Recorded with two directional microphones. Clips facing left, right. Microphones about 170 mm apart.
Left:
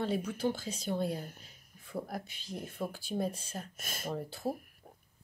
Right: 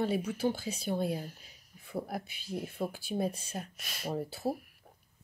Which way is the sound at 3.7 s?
50° left (ahead or behind).